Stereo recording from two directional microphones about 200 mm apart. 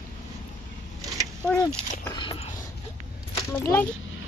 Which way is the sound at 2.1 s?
25° left (ahead or behind).